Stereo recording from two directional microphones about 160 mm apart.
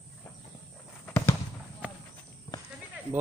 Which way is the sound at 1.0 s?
10° left (ahead or behind).